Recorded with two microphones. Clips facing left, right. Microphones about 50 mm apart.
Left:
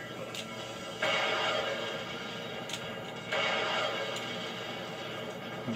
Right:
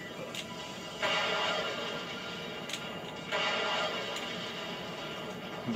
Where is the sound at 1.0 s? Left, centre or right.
Left.